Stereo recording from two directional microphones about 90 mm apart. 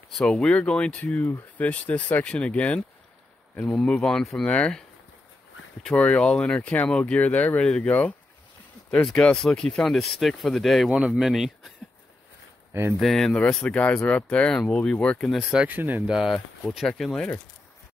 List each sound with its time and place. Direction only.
0.1 s speech: 5° left (ahead or behind)
13.0 s speech: 5° left (ahead or behind)
15.7 s speech: 20° right (ahead or behind)
16.1 s speech: 5° right (ahead or behind)